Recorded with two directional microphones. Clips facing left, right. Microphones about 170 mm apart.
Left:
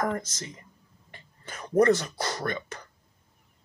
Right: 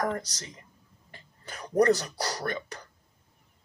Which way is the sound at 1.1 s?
40° right (ahead or behind).